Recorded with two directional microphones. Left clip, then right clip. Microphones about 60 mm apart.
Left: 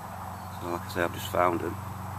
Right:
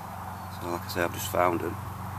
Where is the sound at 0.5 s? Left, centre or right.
Centre.